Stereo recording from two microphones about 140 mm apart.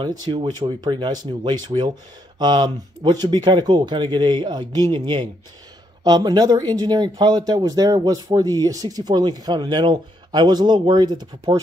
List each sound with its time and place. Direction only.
0.0 s speech: 30° right (ahead or behind)